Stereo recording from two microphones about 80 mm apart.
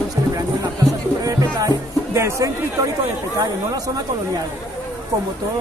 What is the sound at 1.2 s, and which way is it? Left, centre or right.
Music, right.